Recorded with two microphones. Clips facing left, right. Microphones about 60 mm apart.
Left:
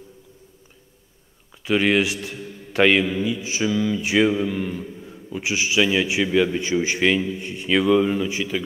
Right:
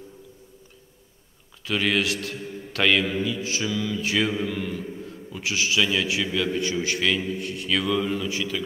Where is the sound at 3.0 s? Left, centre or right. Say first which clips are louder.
Left 2 dB; centre.